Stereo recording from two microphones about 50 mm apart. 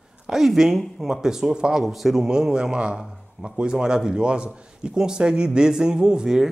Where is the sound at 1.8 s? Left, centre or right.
Centre.